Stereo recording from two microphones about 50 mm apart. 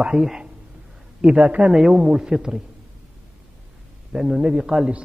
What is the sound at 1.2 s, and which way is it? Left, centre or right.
A man's voice, centre.